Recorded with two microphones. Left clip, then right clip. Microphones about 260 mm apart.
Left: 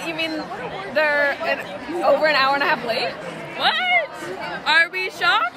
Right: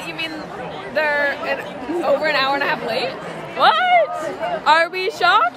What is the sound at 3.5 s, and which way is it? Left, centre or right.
A woman's voice, centre.